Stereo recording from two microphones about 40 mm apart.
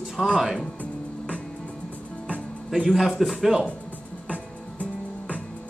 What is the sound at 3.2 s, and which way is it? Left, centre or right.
Speech, centre.